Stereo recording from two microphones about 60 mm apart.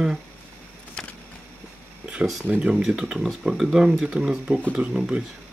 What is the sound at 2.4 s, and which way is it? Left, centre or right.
Speech, right.